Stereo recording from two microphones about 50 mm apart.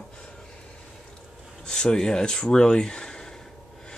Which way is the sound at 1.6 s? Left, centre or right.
Centre.